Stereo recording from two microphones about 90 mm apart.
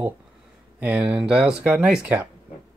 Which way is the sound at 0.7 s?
15° right (ahead or behind).